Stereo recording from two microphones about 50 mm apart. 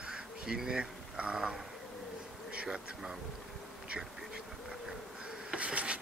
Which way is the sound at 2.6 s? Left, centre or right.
Centre.